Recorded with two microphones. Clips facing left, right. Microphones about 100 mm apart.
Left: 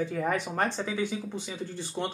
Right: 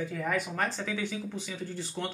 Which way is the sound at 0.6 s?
20° left (ahead or behind).